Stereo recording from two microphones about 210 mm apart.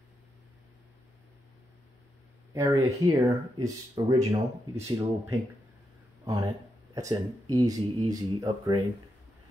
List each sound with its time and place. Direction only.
2.5 s speech: 15° right (ahead or behind)
6.2 s speech: 15° right (ahead or behind)